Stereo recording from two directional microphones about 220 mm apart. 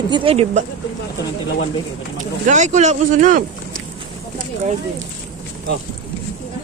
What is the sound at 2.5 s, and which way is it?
Speech, 35° right (ahead or behind).